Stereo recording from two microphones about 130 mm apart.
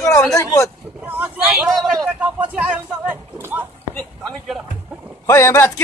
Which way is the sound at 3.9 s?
Centre (ahead or behind).